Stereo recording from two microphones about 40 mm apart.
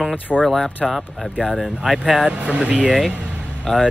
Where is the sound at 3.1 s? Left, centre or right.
Right.